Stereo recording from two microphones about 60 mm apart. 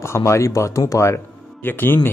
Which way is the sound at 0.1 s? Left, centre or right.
Left.